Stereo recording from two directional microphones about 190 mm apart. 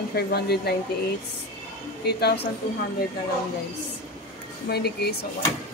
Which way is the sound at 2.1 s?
60° left (ahead or behind).